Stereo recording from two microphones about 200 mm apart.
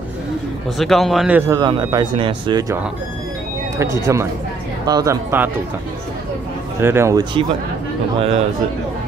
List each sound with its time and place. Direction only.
0.7 s speech: centre (ahead or behind)
1.5 s speech: 20° right (ahead or behind)
3.7 s speech: 15° right (ahead or behind)
6.8 s speech: 10° right (ahead or behind)
8.2 s a man's voice: 30° right (ahead or behind)